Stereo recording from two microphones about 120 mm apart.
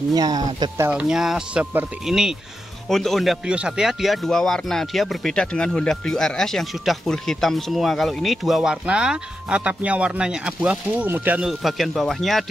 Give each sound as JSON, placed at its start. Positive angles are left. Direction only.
{"t": 0.1, "sound": "speech", "side_deg": -30}
{"t": 0.8, "sound": "speech", "side_deg": -5}